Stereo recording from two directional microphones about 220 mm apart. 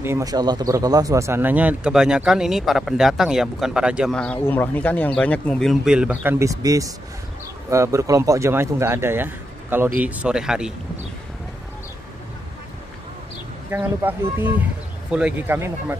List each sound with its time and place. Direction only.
0.0 s speech: 15° right (ahead or behind)
13.7 s speech: 10° right (ahead or behind)